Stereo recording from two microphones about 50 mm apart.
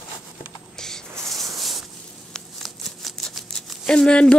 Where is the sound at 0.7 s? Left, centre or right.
Centre.